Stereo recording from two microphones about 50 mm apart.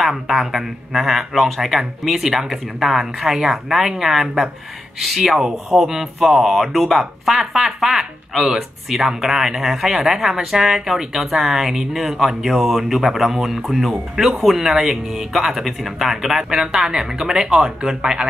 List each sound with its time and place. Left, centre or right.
0.0 s speech: centre